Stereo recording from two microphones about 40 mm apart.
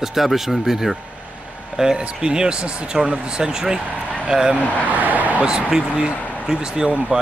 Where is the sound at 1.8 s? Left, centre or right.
Centre.